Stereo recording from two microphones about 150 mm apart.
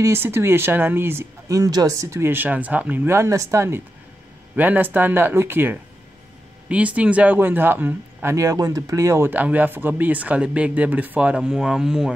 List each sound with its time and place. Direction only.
0.0 s a man's voice: 15° right (ahead or behind)